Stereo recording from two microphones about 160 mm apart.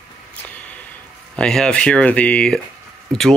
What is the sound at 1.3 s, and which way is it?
Speech, 5° left (ahead or behind).